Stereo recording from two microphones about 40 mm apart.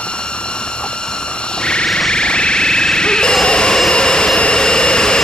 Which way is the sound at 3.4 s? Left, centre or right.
Left.